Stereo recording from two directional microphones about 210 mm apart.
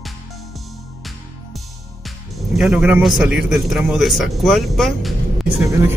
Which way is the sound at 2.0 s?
Centre (ahead or behind).